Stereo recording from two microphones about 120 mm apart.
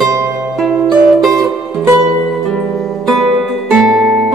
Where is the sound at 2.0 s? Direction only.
Centre (ahead or behind).